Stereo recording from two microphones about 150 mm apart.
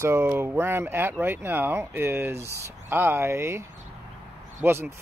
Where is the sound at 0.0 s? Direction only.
15° right (ahead or behind).